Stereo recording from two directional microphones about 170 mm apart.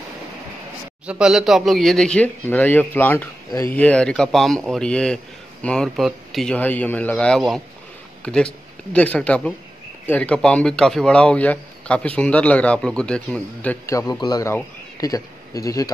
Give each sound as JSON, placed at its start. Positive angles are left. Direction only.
{"t": 1.0, "sound": "a man's voice", "side_deg": -5}
{"t": 13.9, "sound": "a man's voice", "side_deg": 25}